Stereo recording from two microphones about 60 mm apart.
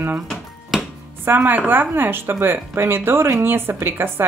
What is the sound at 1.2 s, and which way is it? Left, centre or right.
A woman's voice, right.